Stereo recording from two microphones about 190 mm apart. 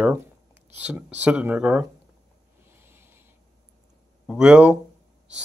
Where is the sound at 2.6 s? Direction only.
10° right (ahead or behind).